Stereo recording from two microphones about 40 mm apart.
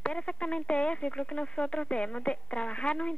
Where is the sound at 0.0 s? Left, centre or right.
Left.